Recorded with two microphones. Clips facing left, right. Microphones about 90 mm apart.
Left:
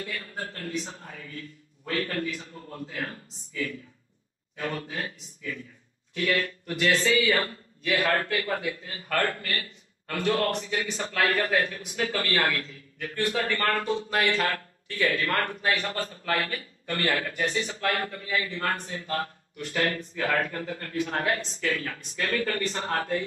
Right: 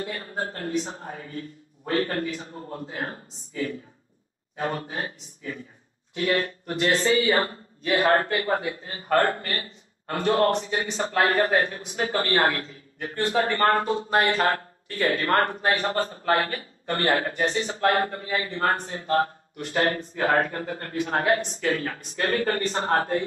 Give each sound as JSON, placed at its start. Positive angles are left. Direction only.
{"t": 0.0, "sound": "speech", "side_deg": -35}